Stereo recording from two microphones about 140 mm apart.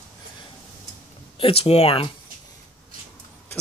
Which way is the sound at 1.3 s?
45° left (ahead or behind).